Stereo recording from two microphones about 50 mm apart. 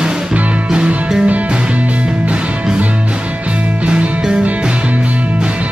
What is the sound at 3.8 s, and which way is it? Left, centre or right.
Music, right.